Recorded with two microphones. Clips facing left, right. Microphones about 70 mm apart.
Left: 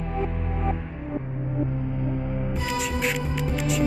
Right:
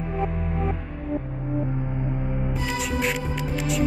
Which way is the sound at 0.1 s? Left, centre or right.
Centre.